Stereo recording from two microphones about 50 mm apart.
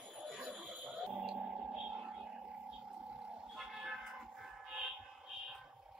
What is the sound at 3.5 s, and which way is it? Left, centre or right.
Music, centre.